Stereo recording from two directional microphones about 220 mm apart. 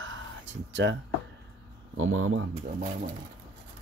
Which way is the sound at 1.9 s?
65° right (ahead or behind).